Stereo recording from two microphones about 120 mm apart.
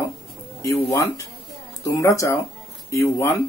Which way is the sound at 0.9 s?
30° left (ahead or behind).